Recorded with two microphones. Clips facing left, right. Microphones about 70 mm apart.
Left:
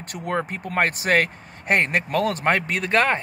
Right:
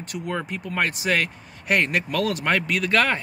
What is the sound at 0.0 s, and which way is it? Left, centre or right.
Speech, left.